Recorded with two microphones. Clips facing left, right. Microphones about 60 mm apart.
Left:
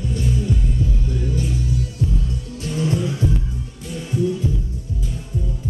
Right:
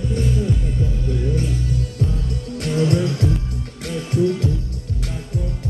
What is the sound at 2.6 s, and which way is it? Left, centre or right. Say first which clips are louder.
Music: right 3 dB; right.